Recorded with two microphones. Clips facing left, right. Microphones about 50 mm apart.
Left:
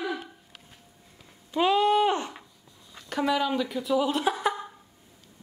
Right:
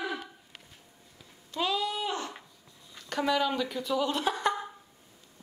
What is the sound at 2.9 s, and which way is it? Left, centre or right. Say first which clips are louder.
Speech: left 2 dB; centre.